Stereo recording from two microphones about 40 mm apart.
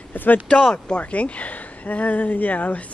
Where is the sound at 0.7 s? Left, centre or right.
Left.